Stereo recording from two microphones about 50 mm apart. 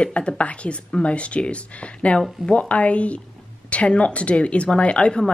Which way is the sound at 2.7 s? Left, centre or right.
Left.